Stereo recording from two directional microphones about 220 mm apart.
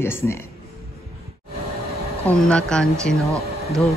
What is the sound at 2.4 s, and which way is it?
Speech, 5° left (ahead or behind).